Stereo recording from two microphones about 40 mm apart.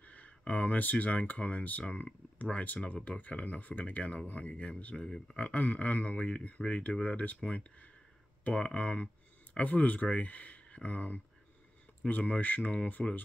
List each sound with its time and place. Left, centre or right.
0.0 s speech: left
5.0 s speech: left